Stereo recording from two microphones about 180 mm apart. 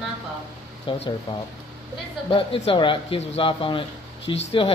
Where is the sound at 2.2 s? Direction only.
30° left (ahead or behind).